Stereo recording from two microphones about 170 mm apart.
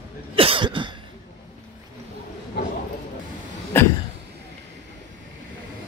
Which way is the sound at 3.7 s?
10° left (ahead or behind).